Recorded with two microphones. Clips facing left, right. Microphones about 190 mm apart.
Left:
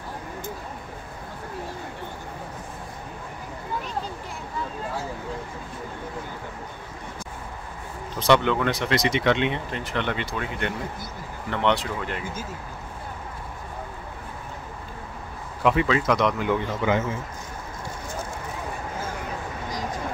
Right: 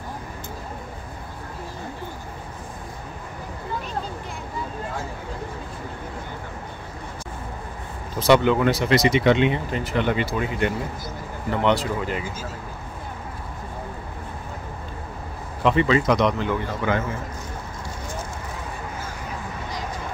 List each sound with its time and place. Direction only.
8.2 s speech: 5° right (ahead or behind)
15.6 s speech: 5° left (ahead or behind)
16.4 s speech: 15° left (ahead or behind)